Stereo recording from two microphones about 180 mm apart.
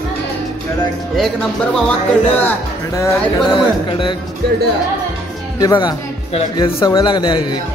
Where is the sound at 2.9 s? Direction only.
15° left (ahead or behind).